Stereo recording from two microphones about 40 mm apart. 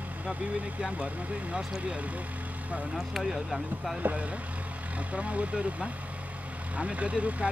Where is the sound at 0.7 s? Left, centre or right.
Right.